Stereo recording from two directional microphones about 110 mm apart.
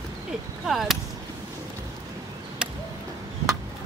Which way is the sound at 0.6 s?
Centre (ahead or behind).